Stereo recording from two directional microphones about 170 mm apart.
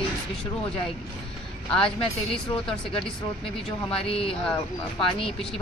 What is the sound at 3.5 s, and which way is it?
Speech, 35° left (ahead or behind).